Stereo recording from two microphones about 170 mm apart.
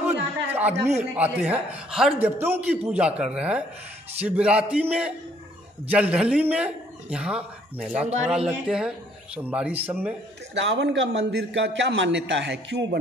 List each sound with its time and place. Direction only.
0.0 s a sound: 10° right (ahead or behind)
0.8 s a man's voice: 10° right (ahead or behind)
10.5 s a man's voice: 90° right